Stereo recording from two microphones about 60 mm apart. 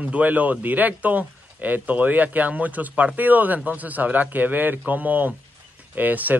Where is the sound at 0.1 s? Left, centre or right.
Right.